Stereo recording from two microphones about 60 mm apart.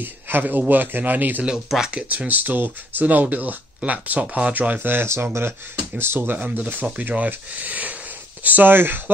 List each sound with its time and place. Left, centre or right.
0.0 s a man's voice: right
1.4 s speech: centre
4.7 s a man's voice: right